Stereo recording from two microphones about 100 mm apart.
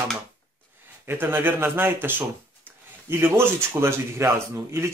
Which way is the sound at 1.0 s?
20° right (ahead or behind).